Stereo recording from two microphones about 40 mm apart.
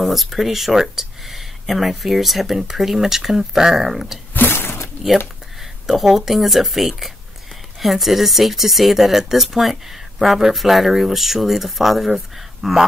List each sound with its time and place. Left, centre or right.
0.0 s speech: centre
4.3 s a sound: left
5.9 s speech: centre